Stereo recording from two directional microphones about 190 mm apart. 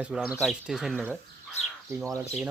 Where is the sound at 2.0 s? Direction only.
15° right (ahead or behind).